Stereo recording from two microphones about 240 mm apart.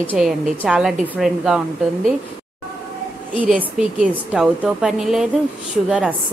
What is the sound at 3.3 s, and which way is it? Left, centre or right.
A woman's voice, centre.